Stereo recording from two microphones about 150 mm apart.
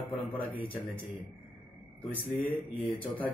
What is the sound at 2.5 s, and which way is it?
Speech, 40° left (ahead or behind).